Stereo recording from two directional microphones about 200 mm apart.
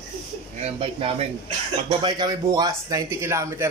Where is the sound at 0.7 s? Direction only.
30° right (ahead or behind).